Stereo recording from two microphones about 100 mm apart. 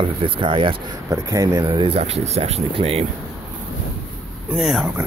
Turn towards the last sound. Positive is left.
turn(degrees=0)  # may be behind; listen again after turning